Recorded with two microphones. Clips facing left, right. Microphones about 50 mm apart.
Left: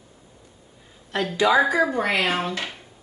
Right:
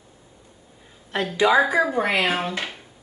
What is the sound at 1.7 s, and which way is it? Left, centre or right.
Speech, centre.